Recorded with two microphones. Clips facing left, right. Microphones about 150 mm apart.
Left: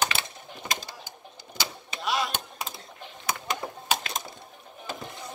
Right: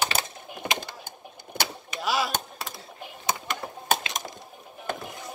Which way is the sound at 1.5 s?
60° right (ahead or behind).